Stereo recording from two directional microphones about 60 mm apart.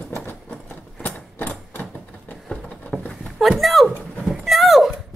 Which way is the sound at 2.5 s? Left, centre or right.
Centre.